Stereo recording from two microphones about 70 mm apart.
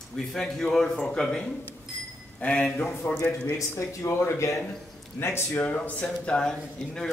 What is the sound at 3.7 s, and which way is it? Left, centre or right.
Speech, left.